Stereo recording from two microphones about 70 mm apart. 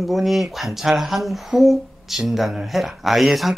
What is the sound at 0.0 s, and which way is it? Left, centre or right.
Speech, centre.